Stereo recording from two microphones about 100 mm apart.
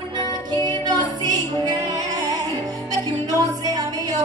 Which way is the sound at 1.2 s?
40° right (ahead or behind).